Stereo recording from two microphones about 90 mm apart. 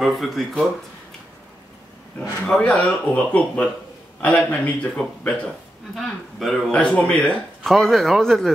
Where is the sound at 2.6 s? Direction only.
15° left (ahead or behind).